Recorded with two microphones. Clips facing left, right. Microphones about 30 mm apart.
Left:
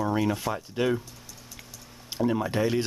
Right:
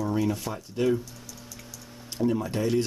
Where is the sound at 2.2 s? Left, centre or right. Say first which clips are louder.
Left 1 dB; left.